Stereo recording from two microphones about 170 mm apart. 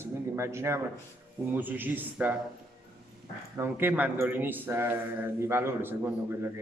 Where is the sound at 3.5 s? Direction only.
10° right (ahead or behind).